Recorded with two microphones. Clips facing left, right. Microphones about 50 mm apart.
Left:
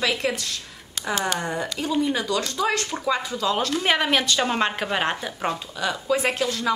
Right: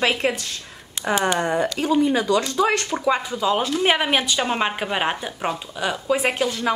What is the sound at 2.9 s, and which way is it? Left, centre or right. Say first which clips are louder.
A woman's voice: right 3 dB; centre.